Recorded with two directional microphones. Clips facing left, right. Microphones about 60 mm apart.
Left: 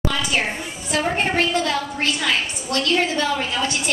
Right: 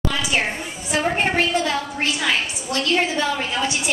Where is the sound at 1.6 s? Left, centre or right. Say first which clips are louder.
Even; centre.